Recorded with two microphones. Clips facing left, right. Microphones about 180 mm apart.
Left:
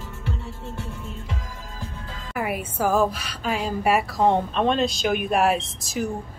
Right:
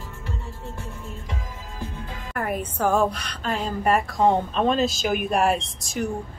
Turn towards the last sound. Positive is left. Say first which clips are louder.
# even
turn(degrees=0)  # may be behind; listen again after turning